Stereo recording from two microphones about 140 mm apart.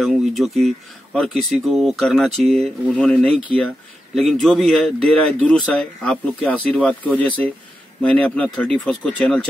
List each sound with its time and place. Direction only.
0.0 s speech: centre (ahead or behind)